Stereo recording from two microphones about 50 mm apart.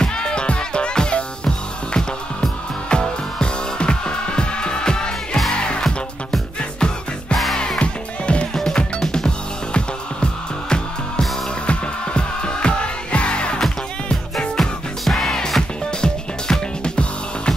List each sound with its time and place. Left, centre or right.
0.0 s music: centre
14.6 s music: centre